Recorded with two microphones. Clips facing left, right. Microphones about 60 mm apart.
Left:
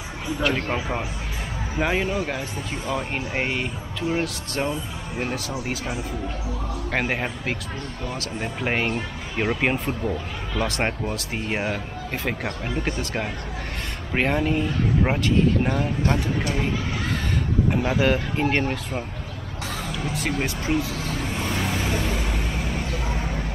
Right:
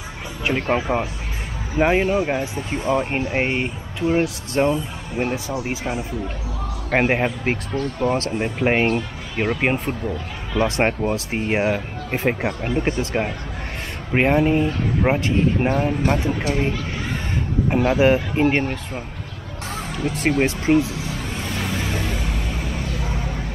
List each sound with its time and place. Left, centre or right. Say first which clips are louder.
0.4 s speech: right 4 dB; right
7.7 s speech: right 10 dB; right
8.4 s speech: right 2 dB; right
9.8 s speech: right 1 dB; centre
10.6 s speech: right 6 dB; right
14.1 s speech: right 5 dB; centre
16.3 s speech: right 3 dB; centre
19.9 s speech: right 7 dB; right
21.9 s vehicle: even; centre